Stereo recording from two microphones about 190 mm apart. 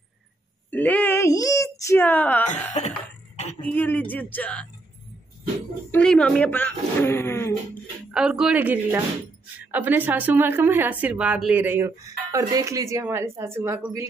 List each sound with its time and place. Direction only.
0.7 s a sound: 10° left (ahead or behind)
2.8 s cough: 35° left (ahead or behind)
3.6 s speech: 10° left (ahead or behind)
5.9 s speech: 5° left (ahead or behind)
8.1 s a woman's voice: 5° right (ahead or behind)